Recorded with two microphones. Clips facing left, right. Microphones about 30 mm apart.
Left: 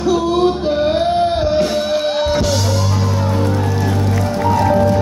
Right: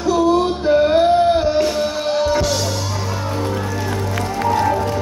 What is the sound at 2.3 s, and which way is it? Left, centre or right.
Music, centre.